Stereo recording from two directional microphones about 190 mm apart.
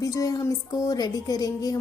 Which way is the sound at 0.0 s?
15° left (ahead or behind).